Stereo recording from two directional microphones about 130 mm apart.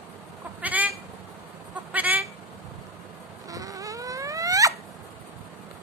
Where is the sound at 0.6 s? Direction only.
10° right (ahead or behind).